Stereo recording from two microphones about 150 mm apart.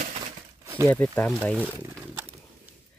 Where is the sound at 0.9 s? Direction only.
10° left (ahead or behind).